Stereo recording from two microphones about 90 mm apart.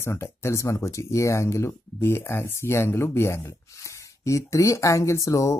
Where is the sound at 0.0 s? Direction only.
30° left (ahead or behind).